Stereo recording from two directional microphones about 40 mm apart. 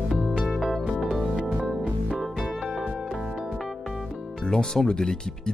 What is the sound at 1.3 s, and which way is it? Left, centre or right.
Music, right.